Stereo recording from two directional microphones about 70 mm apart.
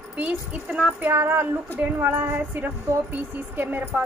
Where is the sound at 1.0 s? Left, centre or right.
Right.